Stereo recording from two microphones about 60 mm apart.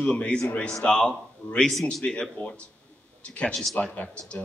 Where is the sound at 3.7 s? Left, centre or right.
Left.